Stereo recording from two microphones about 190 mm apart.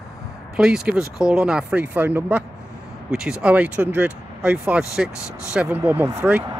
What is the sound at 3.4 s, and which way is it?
Speech, 5° right (ahead or behind).